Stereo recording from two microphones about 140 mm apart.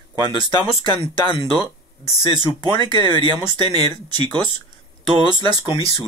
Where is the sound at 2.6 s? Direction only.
35° right (ahead or behind).